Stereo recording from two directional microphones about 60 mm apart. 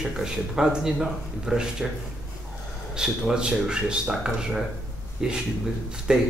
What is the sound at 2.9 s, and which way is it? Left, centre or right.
Speech, centre.